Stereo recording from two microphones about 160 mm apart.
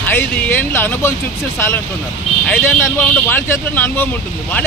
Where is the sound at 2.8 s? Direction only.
10° left (ahead or behind).